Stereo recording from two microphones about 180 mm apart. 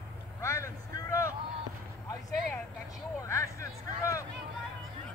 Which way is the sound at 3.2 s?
15° left (ahead or behind).